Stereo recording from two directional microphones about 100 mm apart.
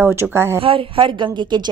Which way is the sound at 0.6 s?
60° right (ahead or behind).